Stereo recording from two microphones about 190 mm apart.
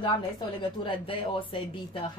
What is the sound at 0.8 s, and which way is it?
Speech, 30° left (ahead or behind).